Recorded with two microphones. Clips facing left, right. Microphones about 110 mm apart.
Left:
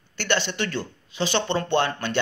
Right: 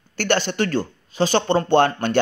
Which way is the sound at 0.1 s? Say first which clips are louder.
Right 4 dB; 45° right (ahead or behind).